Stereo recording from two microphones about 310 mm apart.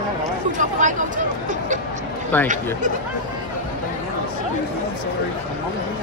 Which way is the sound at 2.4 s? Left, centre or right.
Right.